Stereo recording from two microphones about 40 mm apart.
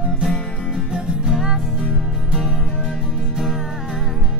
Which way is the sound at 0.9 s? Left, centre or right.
Centre.